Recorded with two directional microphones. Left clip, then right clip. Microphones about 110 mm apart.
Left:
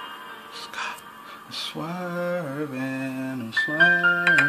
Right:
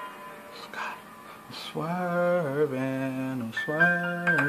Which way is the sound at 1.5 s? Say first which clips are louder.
Left 1 dB; 15° right (ahead or behind).